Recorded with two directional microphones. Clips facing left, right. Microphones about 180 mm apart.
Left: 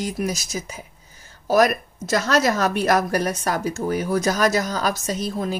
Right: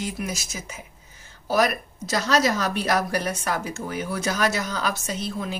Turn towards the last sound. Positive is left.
turn(degrees=40)  # may be behind; listen again after turning